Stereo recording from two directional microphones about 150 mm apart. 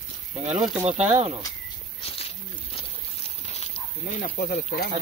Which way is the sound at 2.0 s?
40° left (ahead or behind).